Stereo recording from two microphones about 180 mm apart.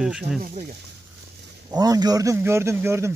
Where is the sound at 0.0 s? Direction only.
5° right (ahead or behind).